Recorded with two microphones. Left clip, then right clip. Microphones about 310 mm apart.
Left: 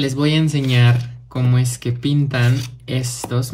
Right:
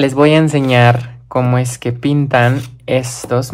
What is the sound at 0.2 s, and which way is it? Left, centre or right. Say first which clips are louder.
Speech: right 11 dB; right.